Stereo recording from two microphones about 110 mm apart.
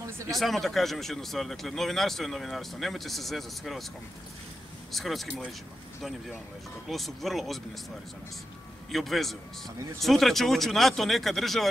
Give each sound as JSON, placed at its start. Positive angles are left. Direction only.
{"t": 0.0, "sound": "a sound", "side_deg": -30}
{"t": 0.4, "sound": "speech", "side_deg": 0}
{"t": 4.9, "sound": "speech", "side_deg": 0}
{"t": 6.9, "sound": "speech", "side_deg": 0}
{"t": 8.9, "sound": "speech", "side_deg": 0}